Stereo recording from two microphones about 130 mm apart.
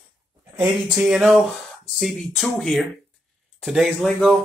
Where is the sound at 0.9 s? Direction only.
5° right (ahead or behind).